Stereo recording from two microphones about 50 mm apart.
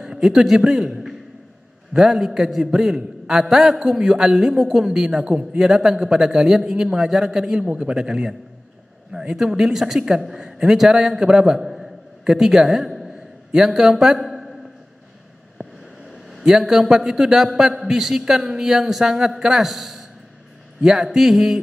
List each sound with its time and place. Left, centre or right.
0.0 s a man's voice: centre
2.0 s a man's voice: centre
7.6 s a man's voice: right
7.9 s a man's voice: centre
16.4 s a man's voice: centre